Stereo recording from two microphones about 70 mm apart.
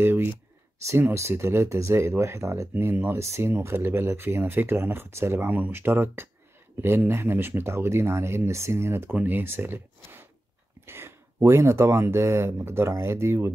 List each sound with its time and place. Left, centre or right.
0.0 s speech: right
2.7 s speech: right
9.1 s speech: right